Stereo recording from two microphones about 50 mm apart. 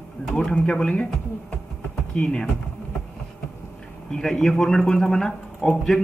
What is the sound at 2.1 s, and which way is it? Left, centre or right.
Speech, centre.